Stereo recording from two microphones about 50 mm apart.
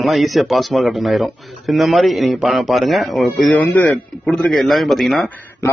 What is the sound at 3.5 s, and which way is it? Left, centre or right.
Speech, left.